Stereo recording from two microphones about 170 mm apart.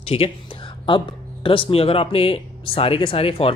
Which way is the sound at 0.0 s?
35° left (ahead or behind).